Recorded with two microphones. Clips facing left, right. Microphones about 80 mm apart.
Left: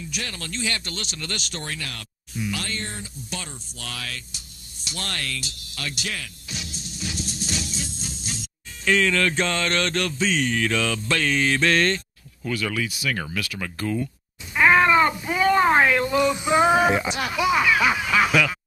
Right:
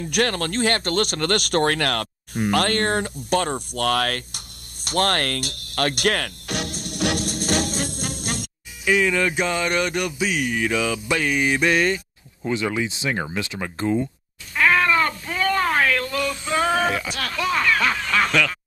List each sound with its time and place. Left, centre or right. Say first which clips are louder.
0.0 s speech: right 11 dB; right
4.8 s music: right 11 dB; right
8.8 s speech: right 1 dB; centre
12.4 s speech: right 3 dB; right
14.5 s cat: left 2 dB; centre